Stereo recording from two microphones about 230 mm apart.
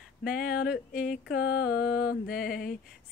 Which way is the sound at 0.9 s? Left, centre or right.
Left.